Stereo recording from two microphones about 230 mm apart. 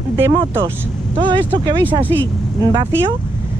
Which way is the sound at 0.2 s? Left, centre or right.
Centre.